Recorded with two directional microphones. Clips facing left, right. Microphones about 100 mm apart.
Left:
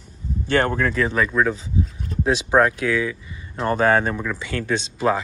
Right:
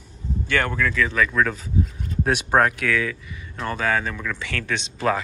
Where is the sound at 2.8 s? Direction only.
25° left (ahead or behind).